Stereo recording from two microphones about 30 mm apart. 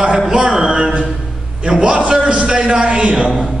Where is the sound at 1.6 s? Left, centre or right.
Right.